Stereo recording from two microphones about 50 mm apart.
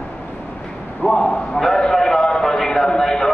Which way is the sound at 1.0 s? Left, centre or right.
Centre.